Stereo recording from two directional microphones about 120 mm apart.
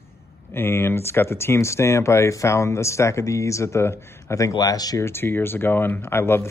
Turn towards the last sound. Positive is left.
turn(degrees=20)  # may be behind; listen again after turning